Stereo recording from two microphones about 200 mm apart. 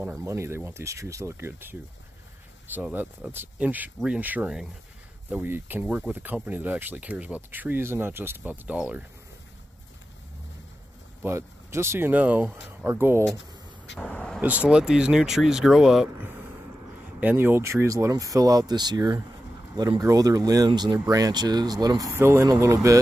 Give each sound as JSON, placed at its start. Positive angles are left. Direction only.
{"t": 0.0, "sound": "speech", "side_deg": -15}
{"t": 11.2, "sound": "speech", "side_deg": -15}
{"t": 13.2, "sound": "a sound", "side_deg": 65}
{"t": 13.9, "sound": "speech", "side_deg": 5}
{"t": 14.4, "sound": "speech", "side_deg": -5}